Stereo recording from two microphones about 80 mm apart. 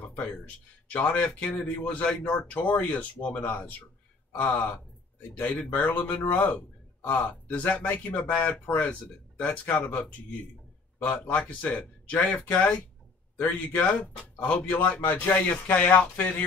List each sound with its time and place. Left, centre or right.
0.9 s a man's voice: centre
9.4 s a man's voice: left